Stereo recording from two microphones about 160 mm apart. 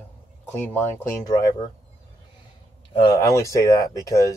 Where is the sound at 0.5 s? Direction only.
15° left (ahead or behind).